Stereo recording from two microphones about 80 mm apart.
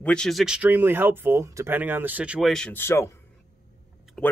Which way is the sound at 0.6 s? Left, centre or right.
Right.